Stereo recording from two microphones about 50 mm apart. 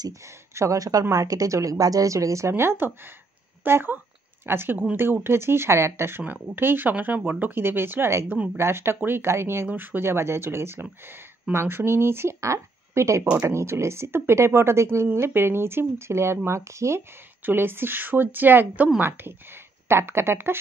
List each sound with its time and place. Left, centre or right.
0.5 s speech: right
1.5 s speech: right
2.5 s speech: right
9.7 s speech: right
10.0 s speech: right
15.1 s speech: right
16.4 s speech: right
17.4 s speech: right